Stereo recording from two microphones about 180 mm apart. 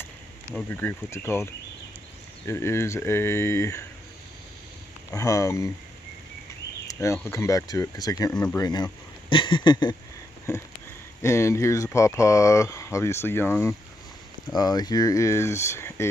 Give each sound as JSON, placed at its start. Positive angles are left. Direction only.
{"t": 0.6, "sound": "speech", "side_deg": 10}
{"t": 5.1, "sound": "speech", "side_deg": 20}
{"t": 6.9, "sound": "speech", "side_deg": 15}
{"t": 8.3, "sound": "speech", "side_deg": 5}
{"t": 8.5, "sound": "speech", "side_deg": 20}
{"t": 10.5, "sound": "speech", "side_deg": 15}
{"t": 14.5, "sound": "speech", "side_deg": 20}